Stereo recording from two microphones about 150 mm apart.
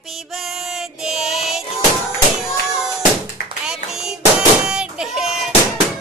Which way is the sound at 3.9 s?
5° right (ahead or behind).